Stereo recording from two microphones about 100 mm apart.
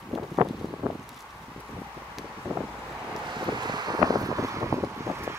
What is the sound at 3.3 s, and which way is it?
Wind noise, 45° right (ahead or behind).